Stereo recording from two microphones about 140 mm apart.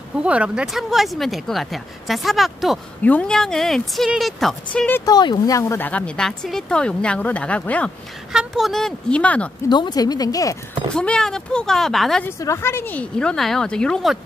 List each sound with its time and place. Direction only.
0.2 s speech: 10° right (ahead or behind)
3.0 s speech: 10° left (ahead or behind)
5.0 s speech: 30° left (ahead or behind)
5.6 s speech: 15° left (ahead or behind)
8.3 s speech: 5° right (ahead or behind)
9.7 s speech: 30° left (ahead or behind)
11.0 s speech: 5° left (ahead or behind)
12.3 s speech: 20° left (ahead or behind)